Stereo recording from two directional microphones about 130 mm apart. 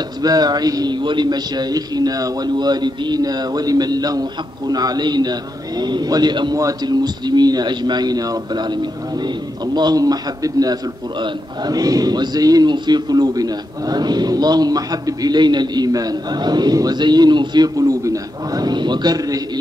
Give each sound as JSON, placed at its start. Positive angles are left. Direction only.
{"t": 0.2, "sound": "a man's voice", "side_deg": -30}
{"t": 9.8, "sound": "a man's voice", "side_deg": -30}